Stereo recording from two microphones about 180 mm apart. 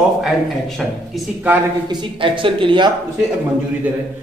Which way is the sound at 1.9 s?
25° right (ahead or behind).